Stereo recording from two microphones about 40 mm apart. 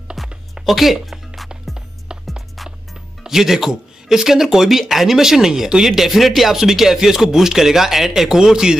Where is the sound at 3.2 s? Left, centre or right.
Centre.